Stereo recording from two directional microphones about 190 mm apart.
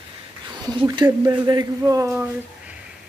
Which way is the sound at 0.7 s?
20° right (ahead or behind).